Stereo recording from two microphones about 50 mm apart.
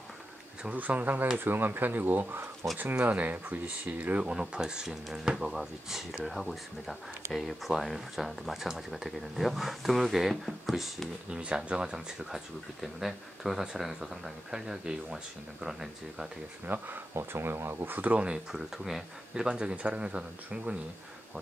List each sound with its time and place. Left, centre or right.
0.7 s speech: right
4.3 s speech: centre
11.2 s speech: centre
16.6 s speech: right
18.1 s speech: right
18.5 s speech: centre
19.4 s speech: centre